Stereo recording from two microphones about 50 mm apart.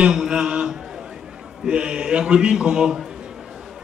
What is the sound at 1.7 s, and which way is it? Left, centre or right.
A man's voice, centre.